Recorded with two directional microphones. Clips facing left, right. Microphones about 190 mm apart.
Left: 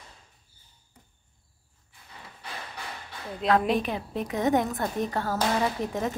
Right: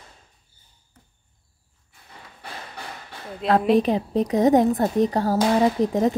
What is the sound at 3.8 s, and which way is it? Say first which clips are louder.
A woman's voice: right 10 dB; 35° right (ahead or behind).